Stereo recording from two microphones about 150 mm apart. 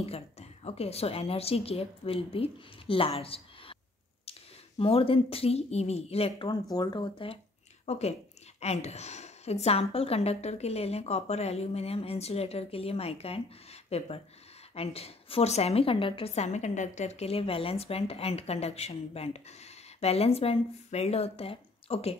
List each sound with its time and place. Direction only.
0.0 s a woman's voice: 45° left (ahead or behind)
7.8 s a woman's voice: 45° left (ahead or behind)